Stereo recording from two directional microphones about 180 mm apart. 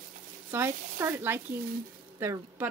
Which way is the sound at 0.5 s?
15° right (ahead or behind).